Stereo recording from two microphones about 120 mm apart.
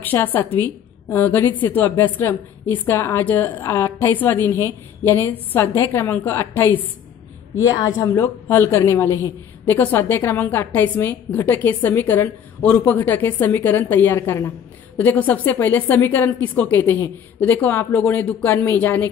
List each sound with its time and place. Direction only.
0.0 s a woman's voice: 15° left (ahead or behind)
7.6 s a woman's voice: 30° left (ahead or behind)